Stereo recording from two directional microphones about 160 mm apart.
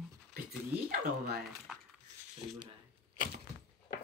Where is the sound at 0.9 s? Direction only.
65° right (ahead or behind).